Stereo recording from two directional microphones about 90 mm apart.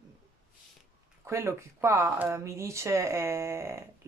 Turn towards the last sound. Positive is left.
turn(degrees=-30)  # may be behind; listen again after turning